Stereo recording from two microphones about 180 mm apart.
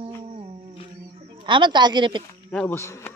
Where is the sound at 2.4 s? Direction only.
10° left (ahead or behind).